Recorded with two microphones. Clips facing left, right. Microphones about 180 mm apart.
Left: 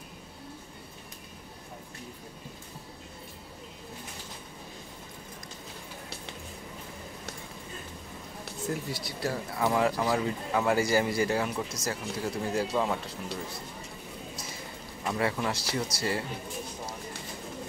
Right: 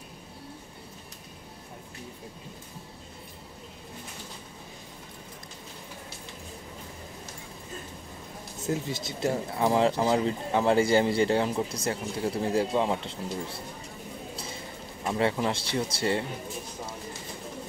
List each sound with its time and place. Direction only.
8.6 s speech: 20° right (ahead or behind)
15.0 s speech: 25° right (ahead or behind)